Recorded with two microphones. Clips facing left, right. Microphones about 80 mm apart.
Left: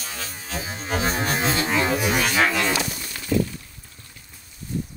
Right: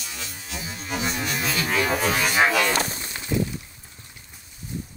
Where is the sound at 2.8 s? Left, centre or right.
Right.